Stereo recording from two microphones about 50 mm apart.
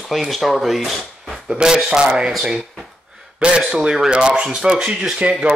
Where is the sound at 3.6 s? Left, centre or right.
Centre.